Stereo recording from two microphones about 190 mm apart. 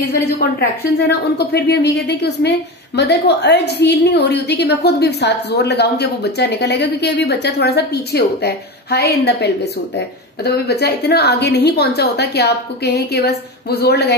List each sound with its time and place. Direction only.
0.0 s a woman's voice: 55° left (ahead or behind)